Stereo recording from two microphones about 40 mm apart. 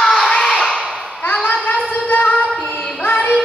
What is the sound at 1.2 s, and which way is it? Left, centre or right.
Child singing, left.